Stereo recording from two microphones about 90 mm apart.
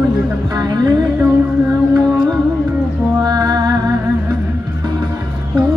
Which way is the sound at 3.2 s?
45° right (ahead or behind).